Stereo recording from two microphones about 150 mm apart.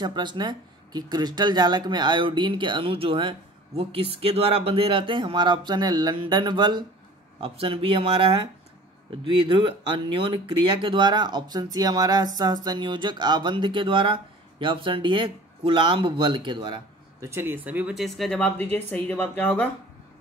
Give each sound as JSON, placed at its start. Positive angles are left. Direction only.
{"t": 0.0, "sound": "speech", "side_deg": -30}
{"t": 17.2, "sound": "speech", "side_deg": -15}